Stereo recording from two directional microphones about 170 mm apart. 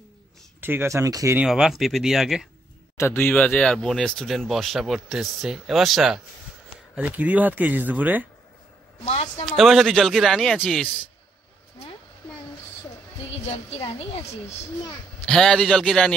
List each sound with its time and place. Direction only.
0.6 s speech: 10° right (ahead or behind)
1.4 s speech: centre (ahead or behind)
3.0 s speech: 15° left (ahead or behind); by 8.3 s 10° right (ahead or behind)
9.0 s a woman's voice: 40° left (ahead or behind)
9.5 s speech: centre (ahead or behind)
13.3 s a woman's voice: 35° left (ahead or behind)
15.2 s speech: 5° left (ahead or behind)